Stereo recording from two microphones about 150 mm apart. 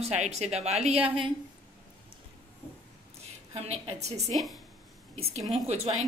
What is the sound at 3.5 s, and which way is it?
Speech, 45° right (ahead or behind).